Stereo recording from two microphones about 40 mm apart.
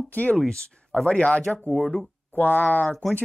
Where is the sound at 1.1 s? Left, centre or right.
Left.